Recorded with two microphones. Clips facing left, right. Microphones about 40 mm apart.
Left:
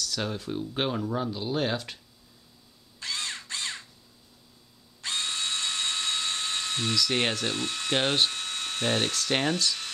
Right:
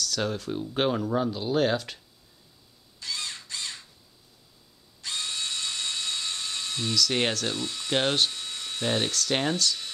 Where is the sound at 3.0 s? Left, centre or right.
Left.